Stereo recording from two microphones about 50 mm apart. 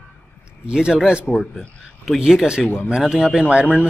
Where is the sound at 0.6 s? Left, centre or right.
Centre.